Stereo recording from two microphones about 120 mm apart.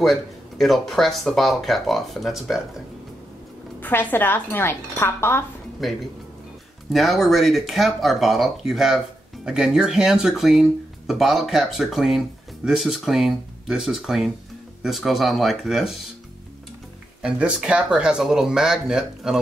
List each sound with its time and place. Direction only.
0.0 s speech: centre (ahead or behind)
3.8 s speech: 15° left (ahead or behind)
5.8 s speech: centre (ahead or behind)
17.2 s speech: 10° right (ahead or behind)